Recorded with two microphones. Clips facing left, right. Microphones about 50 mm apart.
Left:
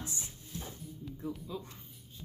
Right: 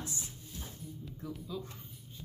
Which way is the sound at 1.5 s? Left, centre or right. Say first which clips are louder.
Right 1 dB; left.